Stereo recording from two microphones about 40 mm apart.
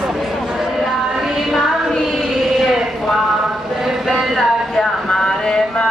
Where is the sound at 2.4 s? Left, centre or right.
Centre.